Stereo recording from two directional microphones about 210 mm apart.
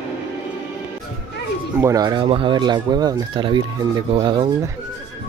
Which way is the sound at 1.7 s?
15° right (ahead or behind).